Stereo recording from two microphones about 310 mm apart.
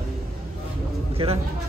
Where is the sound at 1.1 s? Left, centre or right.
Centre.